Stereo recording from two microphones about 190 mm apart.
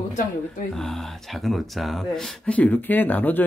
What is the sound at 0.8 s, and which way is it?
Speech, centre (ahead or behind).